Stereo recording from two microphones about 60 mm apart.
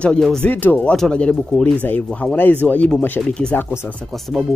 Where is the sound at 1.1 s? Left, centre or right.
Centre.